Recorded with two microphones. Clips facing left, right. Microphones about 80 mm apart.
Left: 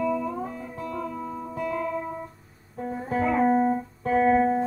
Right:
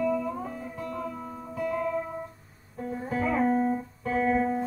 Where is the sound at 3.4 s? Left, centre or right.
Left.